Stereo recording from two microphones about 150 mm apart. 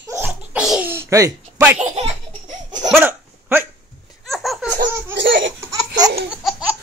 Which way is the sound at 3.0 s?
15° right (ahead or behind).